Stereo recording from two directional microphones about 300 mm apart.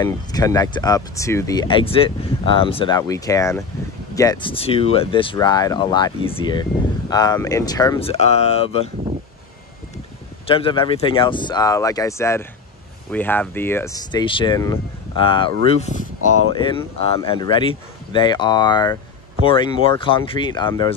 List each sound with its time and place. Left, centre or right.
0.0 s speech: centre
10.4 s speech: centre
16.5 s speech: centre